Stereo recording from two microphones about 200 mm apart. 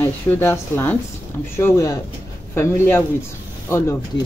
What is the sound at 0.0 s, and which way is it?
Speech, 10° left (ahead or behind).